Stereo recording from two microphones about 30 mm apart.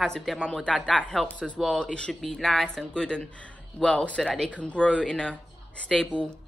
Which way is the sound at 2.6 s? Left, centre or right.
Left.